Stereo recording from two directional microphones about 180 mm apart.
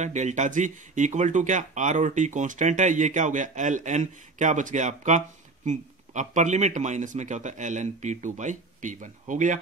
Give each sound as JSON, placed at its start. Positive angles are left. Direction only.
{"t": 0.0, "sound": "a man's voice", "side_deg": -40}